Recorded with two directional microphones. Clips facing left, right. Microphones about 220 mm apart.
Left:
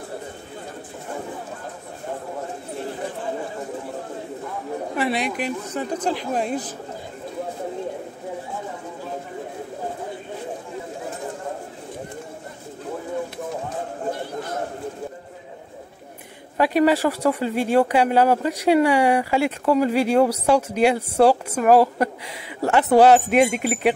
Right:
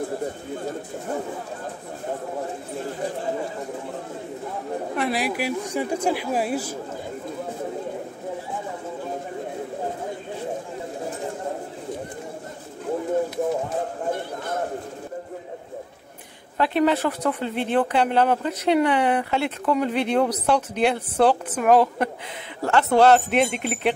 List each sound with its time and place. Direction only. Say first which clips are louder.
4.9 s a man's voice: left 1 dB; centre (ahead or behind)
14.1 s a sound: even; 55° right (ahead or behind)
16.5 s a woman's voice: left 3 dB; 10° left (ahead or behind)
22.6 s speech: left 3 dB; 15° left (ahead or behind)